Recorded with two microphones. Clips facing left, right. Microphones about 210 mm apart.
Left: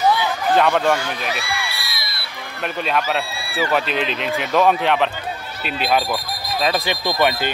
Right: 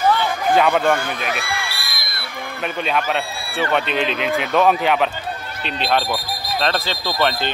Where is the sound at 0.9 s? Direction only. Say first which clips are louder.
Right 1 dB; 55° right (ahead or behind).